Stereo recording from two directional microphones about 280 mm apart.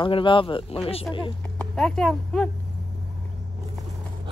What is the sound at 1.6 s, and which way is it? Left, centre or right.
Speech, centre.